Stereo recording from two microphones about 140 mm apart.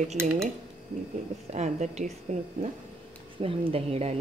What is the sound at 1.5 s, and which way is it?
A woman's voice, 55° right (ahead or behind).